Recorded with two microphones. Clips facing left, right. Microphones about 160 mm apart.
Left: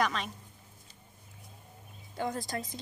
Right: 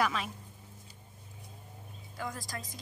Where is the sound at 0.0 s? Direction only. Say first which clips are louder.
Even; 5° right (ahead or behind).